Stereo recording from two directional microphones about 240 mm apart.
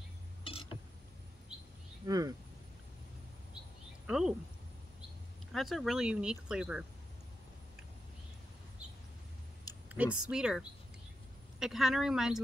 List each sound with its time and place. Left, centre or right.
0.4 s a sound: left
2.0 s speech: centre
4.1 s speech: centre
5.5 s speech: centre
9.8 s speech: centre
11.6 s speech: centre